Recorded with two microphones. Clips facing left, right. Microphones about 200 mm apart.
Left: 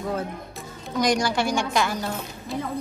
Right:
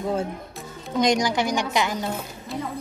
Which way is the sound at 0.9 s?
20° right (ahead or behind).